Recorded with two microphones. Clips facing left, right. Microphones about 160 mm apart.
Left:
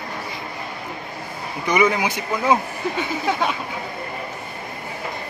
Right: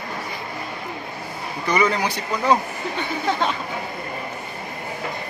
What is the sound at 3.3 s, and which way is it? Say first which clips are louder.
Speech: even; 10° left (ahead or behind).